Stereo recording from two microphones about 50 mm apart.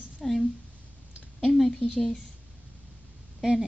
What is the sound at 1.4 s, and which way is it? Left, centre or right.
Speech, centre.